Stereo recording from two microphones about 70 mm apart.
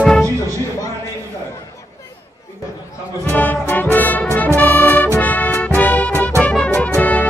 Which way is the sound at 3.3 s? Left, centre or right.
Left.